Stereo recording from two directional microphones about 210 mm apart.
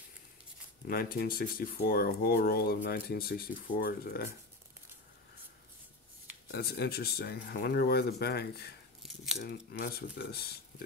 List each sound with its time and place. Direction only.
0.8 s speech: 45° left (ahead or behind)
6.5 s speech: 50° left (ahead or behind)
9.0 s biting: centre (ahead or behind)
9.4 s speech: 45° left (ahead or behind)